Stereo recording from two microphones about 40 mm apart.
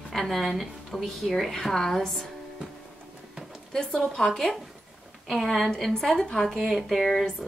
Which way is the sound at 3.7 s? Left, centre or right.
Left.